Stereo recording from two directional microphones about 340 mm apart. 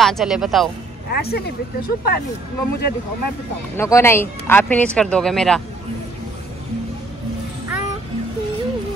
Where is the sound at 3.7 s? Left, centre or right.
Centre.